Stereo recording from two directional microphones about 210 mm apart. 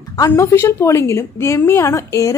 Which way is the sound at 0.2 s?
10° left (ahead or behind).